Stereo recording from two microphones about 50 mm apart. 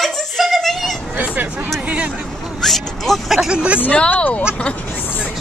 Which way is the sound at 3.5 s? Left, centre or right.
Centre.